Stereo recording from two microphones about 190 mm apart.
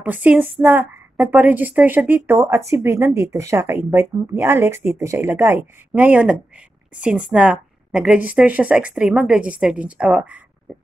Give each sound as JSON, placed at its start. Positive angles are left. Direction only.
{"t": 0.0, "sound": "a woman's voice", "side_deg": -5}